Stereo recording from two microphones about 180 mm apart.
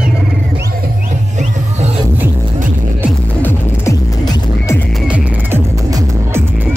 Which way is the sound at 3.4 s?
15° left (ahead or behind).